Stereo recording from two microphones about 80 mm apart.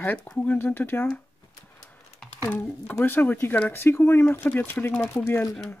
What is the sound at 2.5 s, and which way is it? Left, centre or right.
Speech, left.